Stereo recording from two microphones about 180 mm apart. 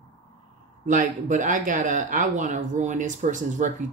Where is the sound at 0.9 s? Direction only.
45° right (ahead or behind).